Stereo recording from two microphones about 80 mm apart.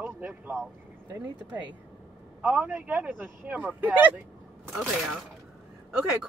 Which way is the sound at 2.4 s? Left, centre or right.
Centre.